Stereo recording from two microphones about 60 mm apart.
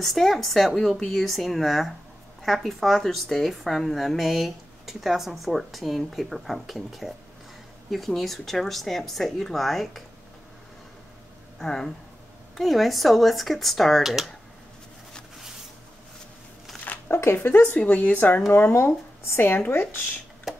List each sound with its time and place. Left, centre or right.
0.0 s speech: centre
11.6 s speech: centre
14.0 s speech: centre
17.1 s speech: left
17.6 s speech: left
18.5 s speech: left
20.5 s a sound: centre